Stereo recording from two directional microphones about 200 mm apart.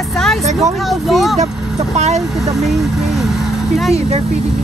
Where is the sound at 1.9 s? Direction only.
35° right (ahead or behind).